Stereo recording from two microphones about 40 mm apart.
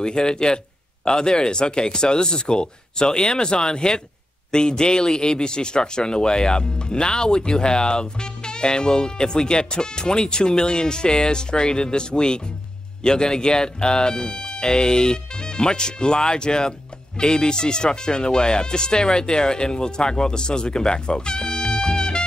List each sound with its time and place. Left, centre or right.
0.0 s a man's voice: centre